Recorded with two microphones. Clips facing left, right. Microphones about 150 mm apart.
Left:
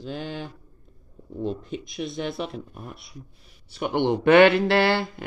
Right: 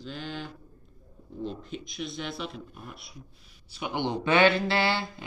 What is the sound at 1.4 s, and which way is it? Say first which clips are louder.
Speech: left 6 dB; 55° left (ahead or behind).